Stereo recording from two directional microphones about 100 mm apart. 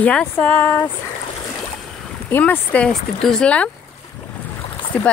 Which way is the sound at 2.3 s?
20° left (ahead or behind).